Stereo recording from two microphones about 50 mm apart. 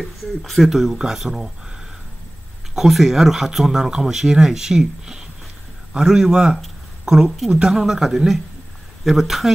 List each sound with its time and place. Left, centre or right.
0.0 s speech: centre
2.7 s speech: centre